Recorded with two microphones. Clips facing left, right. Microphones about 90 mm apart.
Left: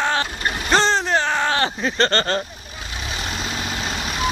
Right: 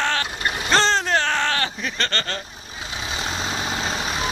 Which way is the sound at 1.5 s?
30° left (ahead or behind).